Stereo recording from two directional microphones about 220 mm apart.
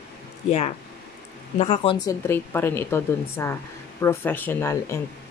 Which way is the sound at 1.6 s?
30° left (ahead or behind).